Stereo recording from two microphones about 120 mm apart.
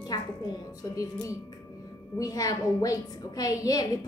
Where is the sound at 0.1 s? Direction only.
35° left (ahead or behind).